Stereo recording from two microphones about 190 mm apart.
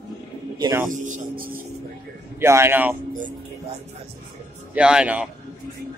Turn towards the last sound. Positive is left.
turn(degrees=-5)  # may be behind; listen again after turning